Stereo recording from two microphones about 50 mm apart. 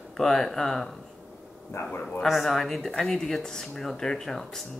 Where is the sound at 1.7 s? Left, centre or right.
Left.